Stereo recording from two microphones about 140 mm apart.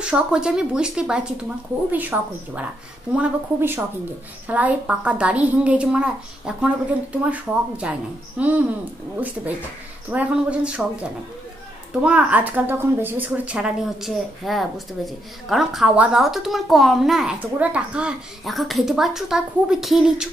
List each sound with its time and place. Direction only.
0.0 s a woman's voice: 5° right (ahead or behind)
10.1 s a woman's voice: 10° right (ahead or behind)
12.0 s a woman's voice: 10° right (ahead or behind)